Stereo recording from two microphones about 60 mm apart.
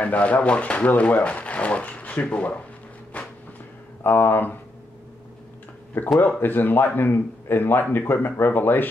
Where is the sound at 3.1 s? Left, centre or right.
Left.